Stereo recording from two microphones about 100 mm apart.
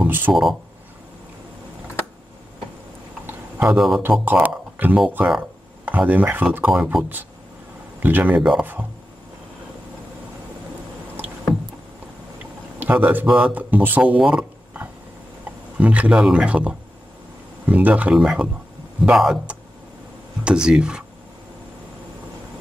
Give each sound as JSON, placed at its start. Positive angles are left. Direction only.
{"t": 0.0, "sound": "speech", "side_deg": -20}
{"t": 0.3, "sound": "speech", "side_deg": 0}
{"t": 3.3, "sound": "a sound", "side_deg": -15}
{"t": 3.7, "sound": "speech", "side_deg": -5}
{"t": 4.3, "sound": "speech", "side_deg": -15}
{"t": 6.7, "sound": "speech", "side_deg": -5}
{"t": 8.0, "sound": "speech", "side_deg": -15}
{"t": 8.4, "sound": "speech", "side_deg": -5}
{"t": 12.7, "sound": "speech", "side_deg": -15}